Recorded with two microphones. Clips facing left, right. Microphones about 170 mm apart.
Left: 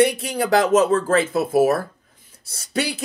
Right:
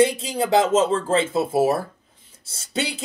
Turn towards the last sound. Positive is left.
turn(degrees=-25)  # may be behind; listen again after turning